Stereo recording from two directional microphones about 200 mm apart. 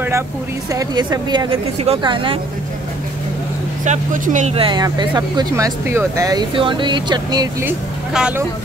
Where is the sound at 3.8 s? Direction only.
40° right (ahead or behind); by 8.4 s 10° right (ahead or behind).